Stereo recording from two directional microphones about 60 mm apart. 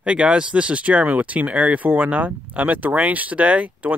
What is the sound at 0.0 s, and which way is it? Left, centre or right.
Speech, centre.